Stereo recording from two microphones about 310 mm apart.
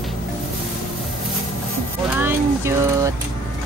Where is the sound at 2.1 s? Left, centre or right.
Centre.